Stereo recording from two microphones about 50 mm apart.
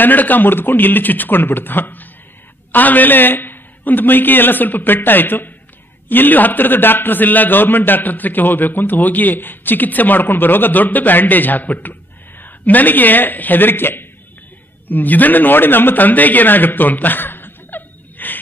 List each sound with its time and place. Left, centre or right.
0.0 s a man's voice: left